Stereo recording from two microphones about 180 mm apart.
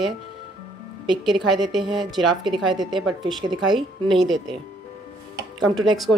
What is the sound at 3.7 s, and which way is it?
Speech, centre (ahead or behind).